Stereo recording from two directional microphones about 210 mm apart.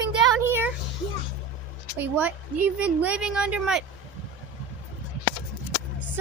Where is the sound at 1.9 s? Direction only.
10° right (ahead or behind).